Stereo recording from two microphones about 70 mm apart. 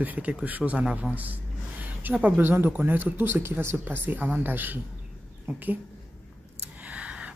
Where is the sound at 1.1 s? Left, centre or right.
Right.